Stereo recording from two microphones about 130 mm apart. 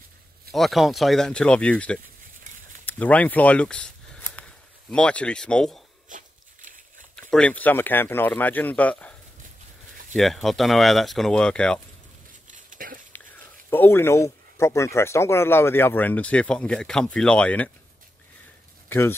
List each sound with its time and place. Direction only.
0.5 s speech: centre (ahead or behind)
6.0 s dog: 80° right
7.2 s speech: 5° left (ahead or behind)
10.1 s speech: centre (ahead or behind)
12.4 s a sound: 80° right
13.7 s speech: 15° left (ahead or behind)
18.9 s speech: 20° left (ahead or behind)